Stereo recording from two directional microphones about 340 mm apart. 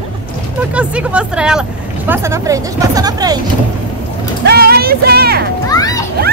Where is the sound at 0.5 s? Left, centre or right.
Centre.